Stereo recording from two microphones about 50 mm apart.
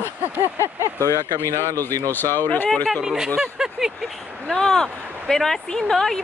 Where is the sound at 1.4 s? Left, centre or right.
Right.